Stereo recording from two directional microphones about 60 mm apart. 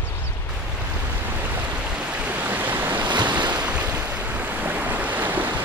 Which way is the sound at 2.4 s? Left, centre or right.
Right.